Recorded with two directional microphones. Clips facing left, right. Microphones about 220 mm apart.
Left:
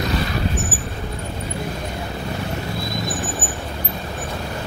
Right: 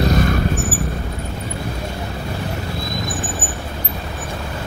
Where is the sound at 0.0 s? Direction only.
45° right (ahead or behind).